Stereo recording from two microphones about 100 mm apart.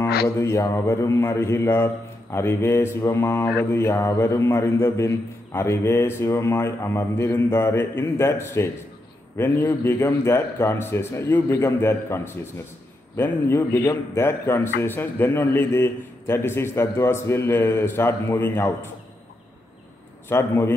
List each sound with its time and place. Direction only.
0.0 s music: 25° left (ahead or behind)
0.7 s a man's voice: 30° left (ahead or behind)
20.2 s a man's voice: 25° left (ahead or behind)